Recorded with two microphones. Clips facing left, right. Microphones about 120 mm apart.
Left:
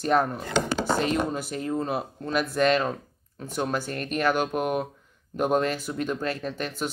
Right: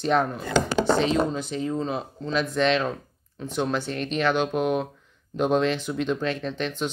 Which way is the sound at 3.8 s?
50° left (ahead or behind).